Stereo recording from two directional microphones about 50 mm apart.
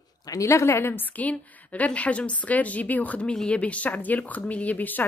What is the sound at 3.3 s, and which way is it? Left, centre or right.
Speech, left.